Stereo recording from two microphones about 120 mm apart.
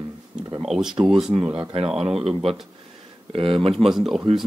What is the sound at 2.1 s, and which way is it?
Speech, 55° right (ahead or behind).